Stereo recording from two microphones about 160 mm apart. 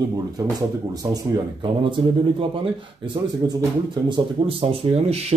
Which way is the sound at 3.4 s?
25° right (ahead or behind).